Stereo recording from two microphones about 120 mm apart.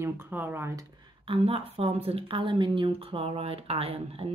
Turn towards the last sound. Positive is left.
turn(degrees=-55)  # may be behind; listen again after turning